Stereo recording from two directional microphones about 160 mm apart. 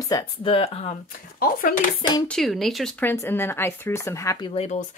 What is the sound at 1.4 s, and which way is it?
Speech, 60° left (ahead or behind).